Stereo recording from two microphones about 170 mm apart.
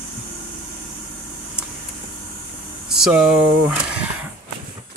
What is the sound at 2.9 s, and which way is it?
Speech, 5° right (ahead or behind).